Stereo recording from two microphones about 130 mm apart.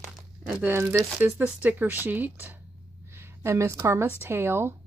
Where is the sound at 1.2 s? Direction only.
10° right (ahead or behind).